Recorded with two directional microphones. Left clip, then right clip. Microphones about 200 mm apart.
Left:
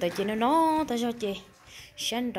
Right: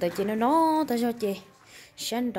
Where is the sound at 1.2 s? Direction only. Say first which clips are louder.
Right 2 dB; 75° right (ahead or behind).